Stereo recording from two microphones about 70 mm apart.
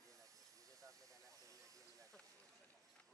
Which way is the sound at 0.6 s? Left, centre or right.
Right.